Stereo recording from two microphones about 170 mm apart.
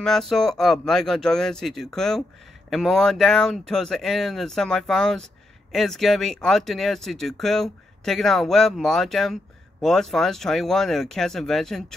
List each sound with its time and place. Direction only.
0.0 s speech: centre (ahead or behind)